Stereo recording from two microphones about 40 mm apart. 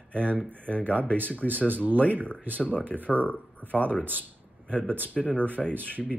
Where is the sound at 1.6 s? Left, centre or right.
Right.